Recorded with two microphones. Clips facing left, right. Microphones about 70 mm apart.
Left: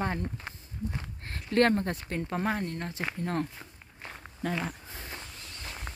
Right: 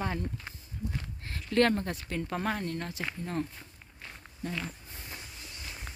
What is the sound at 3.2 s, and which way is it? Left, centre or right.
Speech, left.